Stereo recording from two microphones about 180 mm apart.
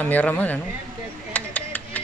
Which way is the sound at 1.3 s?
10° left (ahead or behind).